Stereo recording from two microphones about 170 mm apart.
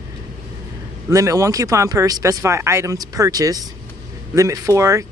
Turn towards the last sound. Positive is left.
turn(degrees=-15)  # may be behind; listen again after turning